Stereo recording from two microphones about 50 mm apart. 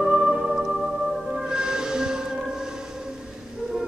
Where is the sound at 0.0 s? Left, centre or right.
Centre.